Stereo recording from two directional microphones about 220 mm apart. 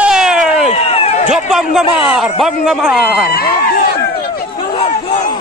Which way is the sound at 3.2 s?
45° left (ahead or behind).